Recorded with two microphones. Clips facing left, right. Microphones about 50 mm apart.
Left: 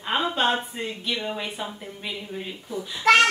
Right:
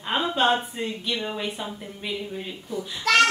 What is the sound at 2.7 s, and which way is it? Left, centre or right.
Speech, centre.